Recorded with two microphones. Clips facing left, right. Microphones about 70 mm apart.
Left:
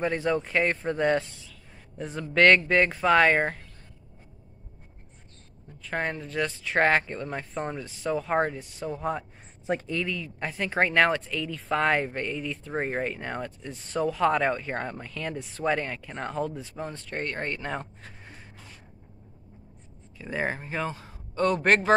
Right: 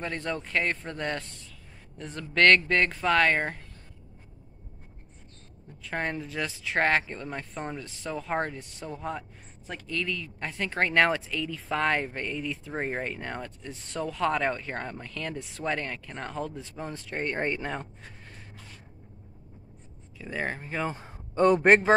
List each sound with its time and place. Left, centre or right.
0.0 s speech: centre
5.9 s speech: centre
9.7 s speech: left
9.9 s speech: centre
17.6 s speech: centre
20.2 s speech: centre
21.0 s a man's voice: centre